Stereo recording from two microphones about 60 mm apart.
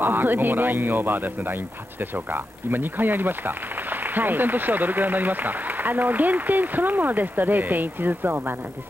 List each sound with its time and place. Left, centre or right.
0.0 s speech: right